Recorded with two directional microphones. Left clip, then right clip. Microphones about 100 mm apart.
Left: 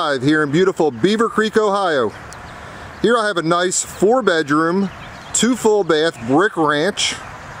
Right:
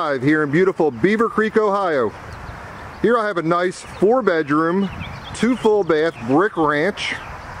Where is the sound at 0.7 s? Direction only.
30° left (ahead or behind).